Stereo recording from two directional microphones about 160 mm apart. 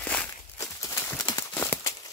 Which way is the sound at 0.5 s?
15° left (ahead or behind).